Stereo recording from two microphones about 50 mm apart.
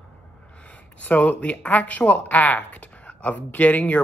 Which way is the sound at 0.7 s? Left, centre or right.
Left.